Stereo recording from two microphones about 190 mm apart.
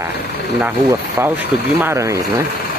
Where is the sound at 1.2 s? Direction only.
15° right (ahead or behind).